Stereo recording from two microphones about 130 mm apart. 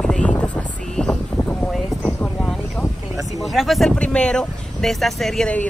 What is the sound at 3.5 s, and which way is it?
Speech, centre (ahead or behind).